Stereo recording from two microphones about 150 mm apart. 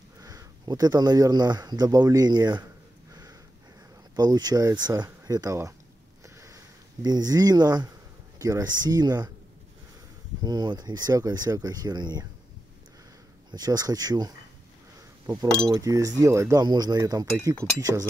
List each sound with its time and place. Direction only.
0.2 s speech: 25° right (ahead or behind)
3.1 s sniff: 25° right (ahead or behind)
4.1 s speech: 25° right (ahead or behind)
6.2 s a sound: 20° right (ahead or behind)
8.4 s speech: 25° right (ahead or behind)
10.4 s speech: 30° right (ahead or behind)
13.5 s speech: 25° right (ahead or behind)
15.7 s speech: 20° right (ahead or behind)